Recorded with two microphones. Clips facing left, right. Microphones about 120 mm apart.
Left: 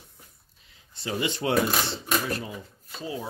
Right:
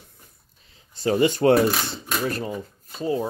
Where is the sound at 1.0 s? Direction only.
45° right (ahead or behind).